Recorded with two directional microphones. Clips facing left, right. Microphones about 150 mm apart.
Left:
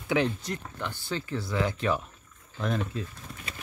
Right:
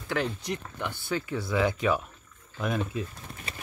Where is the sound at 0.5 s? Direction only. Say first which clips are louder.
Right 2 dB; 15° right (ahead or behind).